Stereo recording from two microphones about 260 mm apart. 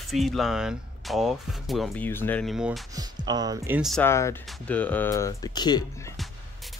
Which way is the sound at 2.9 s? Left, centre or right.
Centre.